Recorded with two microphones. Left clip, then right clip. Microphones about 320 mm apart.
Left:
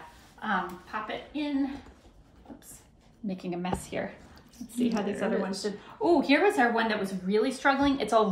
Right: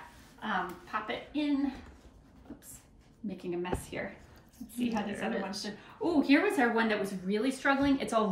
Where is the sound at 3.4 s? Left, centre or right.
Centre.